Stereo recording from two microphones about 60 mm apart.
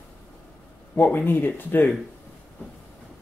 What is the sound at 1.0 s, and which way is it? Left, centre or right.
Speech, left.